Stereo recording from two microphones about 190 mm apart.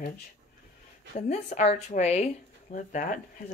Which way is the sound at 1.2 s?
40° left (ahead or behind).